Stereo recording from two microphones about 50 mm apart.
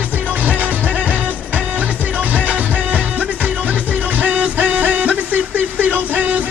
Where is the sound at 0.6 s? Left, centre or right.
Right.